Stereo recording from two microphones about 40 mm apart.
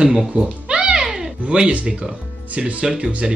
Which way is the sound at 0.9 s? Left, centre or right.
Centre.